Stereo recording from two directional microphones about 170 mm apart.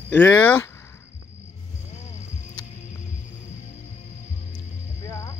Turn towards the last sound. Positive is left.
turn(degrees=15)  # may be behind; listen again after turning